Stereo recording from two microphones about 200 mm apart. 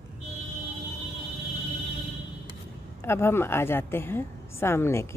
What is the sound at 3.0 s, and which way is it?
A woman's voice, 15° left (ahead or behind).